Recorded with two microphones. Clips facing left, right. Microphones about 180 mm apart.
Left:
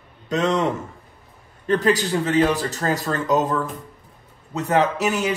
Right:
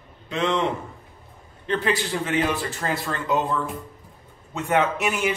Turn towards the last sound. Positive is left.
turn(degrees=40)  # may be behind; listen again after turning